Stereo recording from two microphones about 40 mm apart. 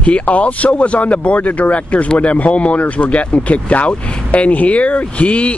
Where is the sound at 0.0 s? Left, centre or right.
Left.